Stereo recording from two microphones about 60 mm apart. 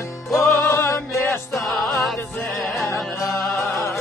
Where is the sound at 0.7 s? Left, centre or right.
Left.